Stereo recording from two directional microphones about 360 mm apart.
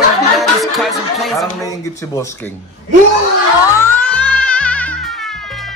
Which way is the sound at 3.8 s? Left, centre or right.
Centre.